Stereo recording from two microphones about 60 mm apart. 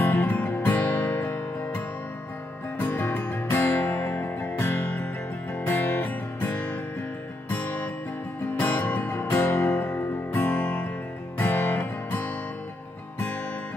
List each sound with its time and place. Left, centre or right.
0.0 s music: left
2.8 s music: left